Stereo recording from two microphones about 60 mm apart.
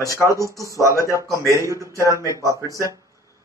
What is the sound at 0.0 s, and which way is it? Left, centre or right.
Speech, left.